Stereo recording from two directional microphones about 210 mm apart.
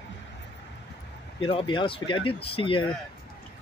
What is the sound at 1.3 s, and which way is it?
Speech, 25° left (ahead or behind).